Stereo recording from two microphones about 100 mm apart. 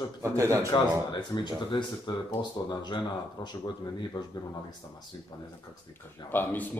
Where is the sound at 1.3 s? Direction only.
50° left (ahead or behind).